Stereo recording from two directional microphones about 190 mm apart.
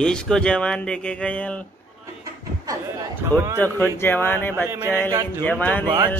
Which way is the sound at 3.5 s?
10° left (ahead or behind).